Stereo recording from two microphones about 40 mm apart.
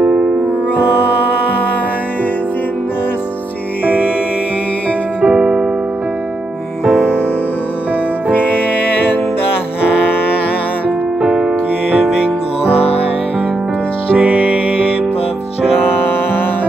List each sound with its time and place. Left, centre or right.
0.0 s music: centre
3.8 s music: right
5.2 s music: centre
8.3 s music: left
11.1 s music: centre
14.1 s music: right